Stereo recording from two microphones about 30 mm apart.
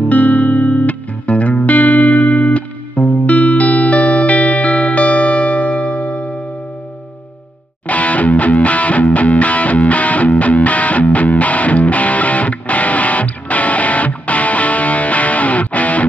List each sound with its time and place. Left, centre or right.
0.1 s music: left
2.2 s music: left
7.8 s music: left